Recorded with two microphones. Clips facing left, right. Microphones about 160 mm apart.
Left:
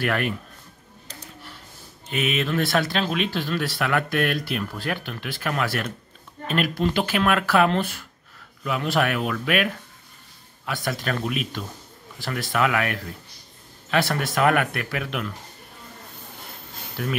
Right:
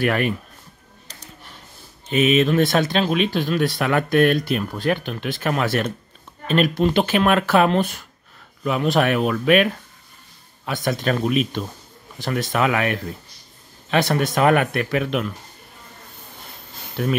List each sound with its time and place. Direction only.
0.0 s speech: 15° right (ahead or behind)
2.0 s speech: 20° right (ahead or behind)
17.0 s speech: 25° right (ahead or behind)